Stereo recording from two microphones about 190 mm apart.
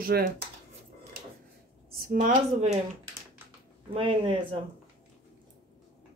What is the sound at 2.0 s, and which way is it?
Speech, 45° right (ahead or behind).